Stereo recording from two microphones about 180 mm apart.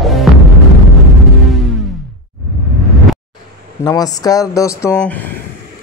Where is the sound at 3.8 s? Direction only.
20° left (ahead or behind).